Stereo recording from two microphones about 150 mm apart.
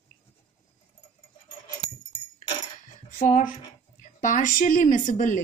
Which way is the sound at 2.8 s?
60° left (ahead or behind).